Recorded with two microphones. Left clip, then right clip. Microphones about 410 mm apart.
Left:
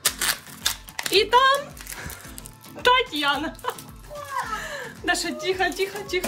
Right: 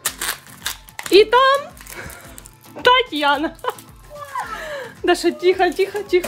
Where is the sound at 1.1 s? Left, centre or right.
Right.